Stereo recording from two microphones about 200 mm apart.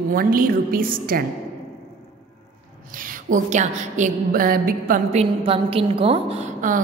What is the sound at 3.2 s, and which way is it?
A woman's voice, 40° right (ahead or behind).